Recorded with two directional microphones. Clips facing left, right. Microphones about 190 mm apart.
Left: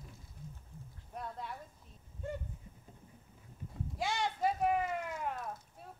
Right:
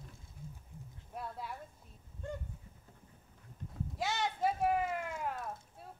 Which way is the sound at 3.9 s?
Centre (ahead or behind).